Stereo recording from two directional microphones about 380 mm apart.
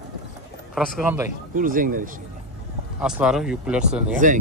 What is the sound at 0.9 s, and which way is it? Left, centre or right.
Speech, centre.